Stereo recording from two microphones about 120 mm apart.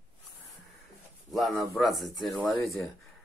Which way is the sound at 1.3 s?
Centre (ahead or behind).